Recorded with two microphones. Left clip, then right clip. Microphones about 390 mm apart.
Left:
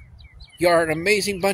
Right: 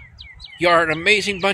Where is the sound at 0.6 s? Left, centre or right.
Left.